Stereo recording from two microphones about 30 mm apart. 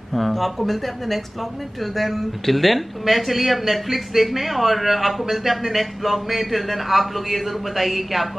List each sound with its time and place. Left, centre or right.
0.1 s speech: centre